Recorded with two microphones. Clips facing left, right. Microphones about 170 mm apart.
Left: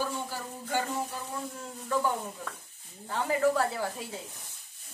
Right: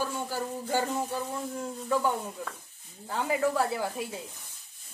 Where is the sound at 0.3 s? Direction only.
40° right (ahead or behind).